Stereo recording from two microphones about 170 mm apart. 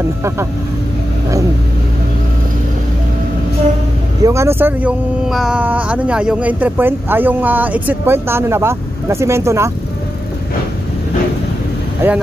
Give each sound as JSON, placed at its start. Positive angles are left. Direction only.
{"t": 4.2, "sound": "speech", "side_deg": -15}
{"t": 12.0, "sound": "speech", "side_deg": -15}